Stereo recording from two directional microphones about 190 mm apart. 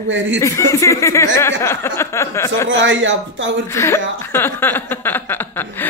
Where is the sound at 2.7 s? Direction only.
80° right.